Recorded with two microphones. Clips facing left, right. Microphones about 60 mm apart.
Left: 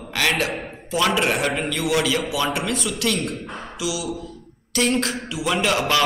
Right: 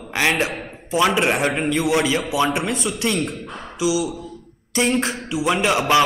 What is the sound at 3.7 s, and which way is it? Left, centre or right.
Speech, right.